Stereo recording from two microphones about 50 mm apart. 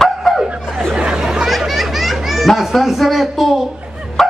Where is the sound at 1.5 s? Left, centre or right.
Centre.